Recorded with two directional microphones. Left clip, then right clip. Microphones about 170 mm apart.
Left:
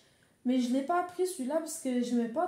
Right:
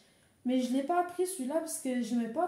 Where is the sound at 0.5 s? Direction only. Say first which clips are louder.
Left 1 dB; 30° left (ahead or behind).